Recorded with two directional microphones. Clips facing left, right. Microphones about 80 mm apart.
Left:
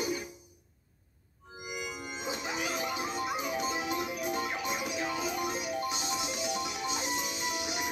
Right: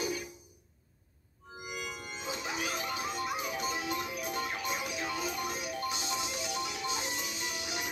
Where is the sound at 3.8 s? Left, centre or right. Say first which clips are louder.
Left 3 dB; left.